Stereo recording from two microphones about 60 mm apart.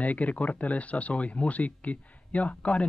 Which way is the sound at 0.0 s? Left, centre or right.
Left.